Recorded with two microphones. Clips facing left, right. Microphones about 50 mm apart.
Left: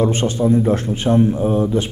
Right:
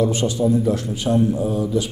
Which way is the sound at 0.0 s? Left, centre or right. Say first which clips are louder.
Left 2 dB; left.